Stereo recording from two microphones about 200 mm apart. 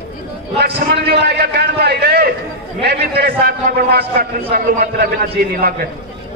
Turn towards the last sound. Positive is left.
turn(degrees=-50)  # may be behind; listen again after turning